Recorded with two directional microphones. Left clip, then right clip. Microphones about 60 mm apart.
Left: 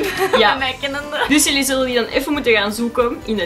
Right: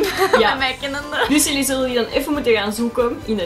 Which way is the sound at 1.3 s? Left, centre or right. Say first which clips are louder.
Left 3 dB; centre.